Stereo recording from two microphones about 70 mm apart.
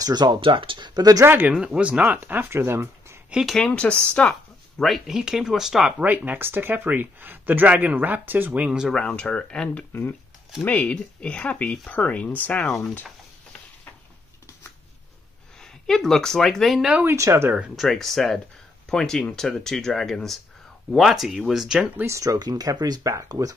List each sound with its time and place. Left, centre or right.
0.0 s speech: right
1.2 s speech: right
2.5 s speech: right
3.6 s speech: centre
5.9 s speech: right
8.9 s speech: centre
15.6 s a woman's voice: centre
17.1 s speech: right
17.7 s speech: centre
22.0 s speech: right
22.4 s speech: right